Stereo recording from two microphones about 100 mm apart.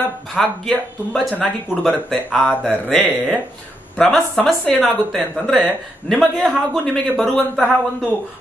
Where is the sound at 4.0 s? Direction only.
5° left (ahead or behind).